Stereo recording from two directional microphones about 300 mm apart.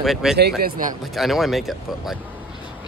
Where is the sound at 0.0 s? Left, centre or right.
Centre.